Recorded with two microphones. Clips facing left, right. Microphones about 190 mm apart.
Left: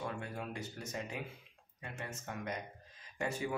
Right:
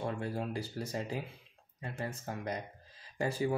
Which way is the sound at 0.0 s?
35° right (ahead or behind).